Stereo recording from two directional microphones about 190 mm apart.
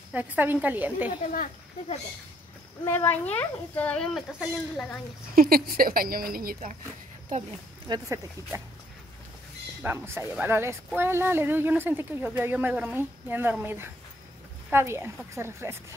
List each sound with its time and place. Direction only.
0.1 s speech: 10° right (ahead or behind)
2.8 s speech: 10° left (ahead or behind)
5.3 s speech: 50° right (ahead or behind)
7.9 s speech: 15° right (ahead or behind)
9.8 s speech: 10° right (ahead or behind)